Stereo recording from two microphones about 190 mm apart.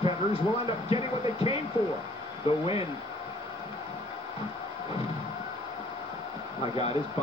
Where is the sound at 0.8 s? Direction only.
30° left (ahead or behind).